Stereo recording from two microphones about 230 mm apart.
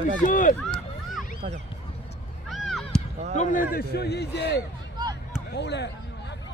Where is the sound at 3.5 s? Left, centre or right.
Left.